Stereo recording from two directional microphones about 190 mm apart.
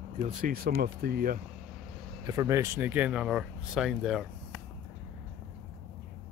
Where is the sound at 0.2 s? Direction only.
45° right (ahead or behind).